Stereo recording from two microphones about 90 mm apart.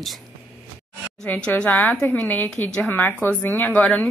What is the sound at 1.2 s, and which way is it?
A woman's voice, 15° left (ahead or behind).